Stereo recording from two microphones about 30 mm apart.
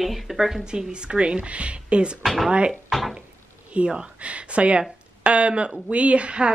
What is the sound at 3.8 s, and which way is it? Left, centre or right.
A woman's voice, right.